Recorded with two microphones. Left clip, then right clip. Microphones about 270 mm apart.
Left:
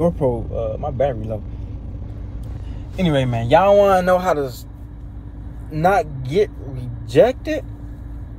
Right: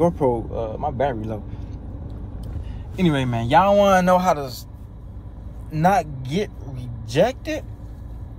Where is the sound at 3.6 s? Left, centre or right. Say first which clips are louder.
Left 3 dB; right.